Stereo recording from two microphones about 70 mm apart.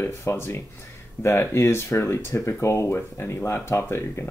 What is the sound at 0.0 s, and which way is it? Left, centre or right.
Speech, left.